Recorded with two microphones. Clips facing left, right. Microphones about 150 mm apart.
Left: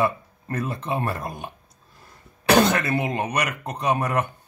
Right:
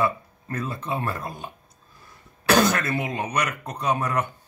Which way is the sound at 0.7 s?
15° left (ahead or behind).